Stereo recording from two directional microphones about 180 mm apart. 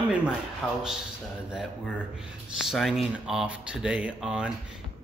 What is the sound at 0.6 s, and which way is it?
Speech, 5° left (ahead or behind).